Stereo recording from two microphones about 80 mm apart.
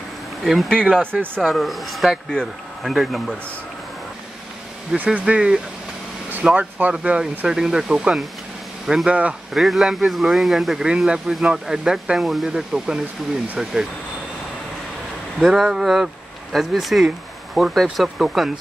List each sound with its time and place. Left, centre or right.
0.4 s speech: centre
0.7 s speech: centre
4.9 s speech: centre
15.3 s speech: centre